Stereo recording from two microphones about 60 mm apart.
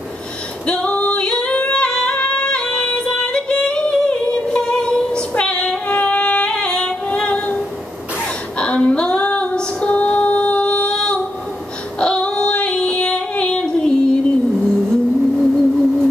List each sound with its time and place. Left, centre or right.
0.7 s yodeling: left
3.9 s female singing: centre
8.5 s female singing: centre
12.0 s female singing: centre
14.6 s music: centre